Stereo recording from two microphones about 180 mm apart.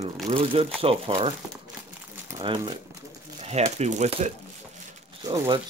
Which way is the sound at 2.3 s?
25° right (ahead or behind).